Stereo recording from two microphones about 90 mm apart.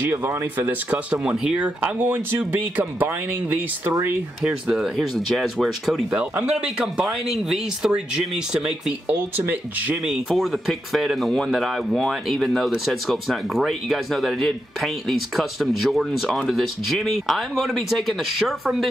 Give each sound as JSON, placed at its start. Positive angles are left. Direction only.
{"t": 0.0, "sound": "speech", "side_deg": -25}
{"t": 1.2, "sound": "speech", "side_deg": -10}
{"t": 4.5, "sound": "speech", "side_deg": -10}
{"t": 6.0, "sound": "speech", "side_deg": -15}
{"t": 9.1, "sound": "speech", "side_deg": -20}
{"t": 10.0, "sound": "speech", "side_deg": -5}